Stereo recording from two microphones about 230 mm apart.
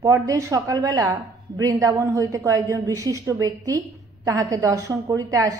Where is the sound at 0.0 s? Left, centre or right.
Centre.